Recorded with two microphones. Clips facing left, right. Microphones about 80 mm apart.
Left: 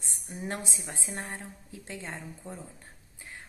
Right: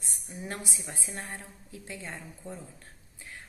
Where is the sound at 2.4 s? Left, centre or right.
Left.